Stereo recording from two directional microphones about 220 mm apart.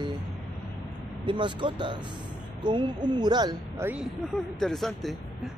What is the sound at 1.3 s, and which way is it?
Speech, 20° right (ahead or behind).